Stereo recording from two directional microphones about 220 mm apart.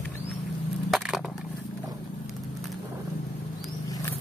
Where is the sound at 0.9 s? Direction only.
Centre (ahead or behind).